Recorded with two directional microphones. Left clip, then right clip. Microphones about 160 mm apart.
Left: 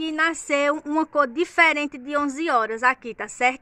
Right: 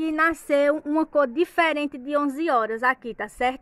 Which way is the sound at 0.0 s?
35° right (ahead or behind).